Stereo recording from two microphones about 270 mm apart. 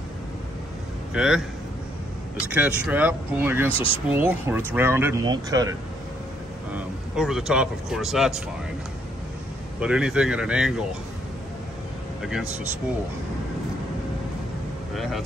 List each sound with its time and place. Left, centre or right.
1.1 s a man's voice: centre
2.5 s speech: centre
3.7 s speech: centre
4.1 s speech: centre
6.7 s speech: centre
9.8 s speech: centre
12.2 s speech: centre
15.0 s speech: centre